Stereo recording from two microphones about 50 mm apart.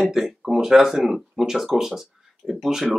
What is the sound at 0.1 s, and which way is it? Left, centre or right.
A man's voice, centre.